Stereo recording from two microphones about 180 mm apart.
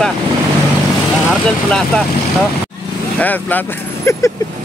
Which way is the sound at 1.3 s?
5° left (ahead or behind).